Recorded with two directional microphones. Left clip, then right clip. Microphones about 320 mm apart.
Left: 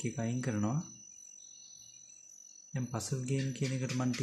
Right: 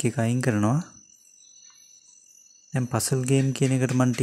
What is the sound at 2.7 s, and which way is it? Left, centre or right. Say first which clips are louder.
Speech: right 13 dB; right.